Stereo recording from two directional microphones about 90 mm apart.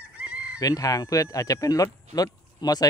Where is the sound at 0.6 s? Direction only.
40° left (ahead or behind).